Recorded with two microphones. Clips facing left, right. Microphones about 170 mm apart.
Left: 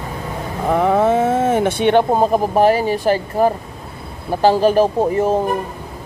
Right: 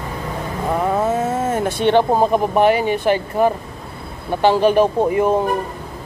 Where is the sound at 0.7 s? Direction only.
90° left.